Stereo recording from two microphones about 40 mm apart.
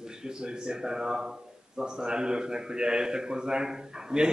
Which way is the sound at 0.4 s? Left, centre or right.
Centre.